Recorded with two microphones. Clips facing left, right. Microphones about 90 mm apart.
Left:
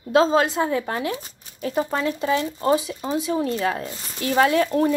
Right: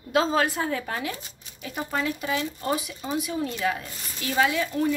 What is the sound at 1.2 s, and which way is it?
Speech, 40° left (ahead or behind).